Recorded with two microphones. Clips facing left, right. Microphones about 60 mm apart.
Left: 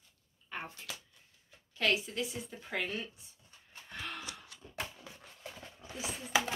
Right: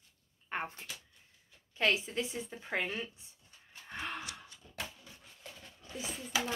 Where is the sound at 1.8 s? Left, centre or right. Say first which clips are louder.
Right 1 dB; right.